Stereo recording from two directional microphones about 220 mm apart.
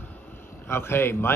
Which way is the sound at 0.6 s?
10° left (ahead or behind).